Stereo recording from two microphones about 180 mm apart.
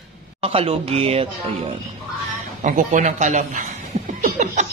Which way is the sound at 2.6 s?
45° right (ahead or behind).